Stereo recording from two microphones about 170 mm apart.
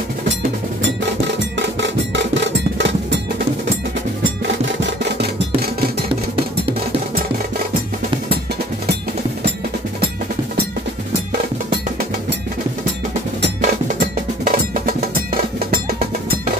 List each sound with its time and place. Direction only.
1.8 s music: 90° right
13.6 s percussion: 55° right (ahead or behind)